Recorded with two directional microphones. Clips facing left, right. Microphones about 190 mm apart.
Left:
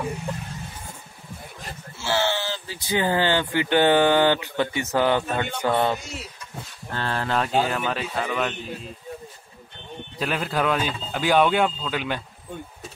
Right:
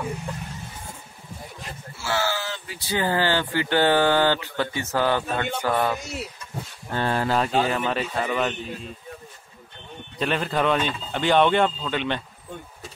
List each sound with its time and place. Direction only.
2.0 s a sound: 25° left (ahead or behind)
2.8 s speech: 20° left (ahead or behind)
5.6 s music: 20° left (ahead or behind)
6.9 s speech: 15° right (ahead or behind)
10.1 s speech: 5° left (ahead or behind)